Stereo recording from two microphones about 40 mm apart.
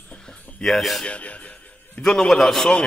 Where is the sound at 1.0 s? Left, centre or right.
Left.